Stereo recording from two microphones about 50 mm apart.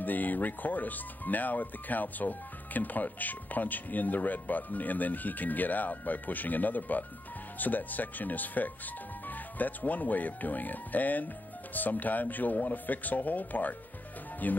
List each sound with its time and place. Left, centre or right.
0.0 s speech: left